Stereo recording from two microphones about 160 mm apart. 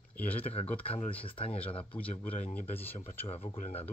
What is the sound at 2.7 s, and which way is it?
Speech, 10° left (ahead or behind).